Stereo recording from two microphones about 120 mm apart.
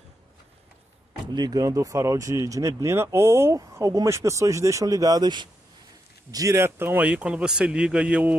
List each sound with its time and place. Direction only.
1.3 s speech: 35° right (ahead or behind)
6.3 s speech: 25° right (ahead or behind)